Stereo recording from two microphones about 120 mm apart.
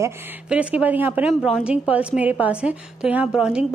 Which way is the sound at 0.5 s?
10° right (ahead or behind).